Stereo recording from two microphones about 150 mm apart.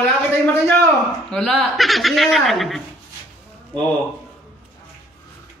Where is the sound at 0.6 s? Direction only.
15° left (ahead or behind).